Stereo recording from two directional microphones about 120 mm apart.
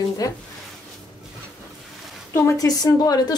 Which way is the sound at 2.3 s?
30° left (ahead or behind).